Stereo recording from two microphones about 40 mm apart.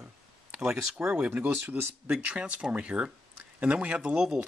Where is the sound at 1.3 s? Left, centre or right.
Right.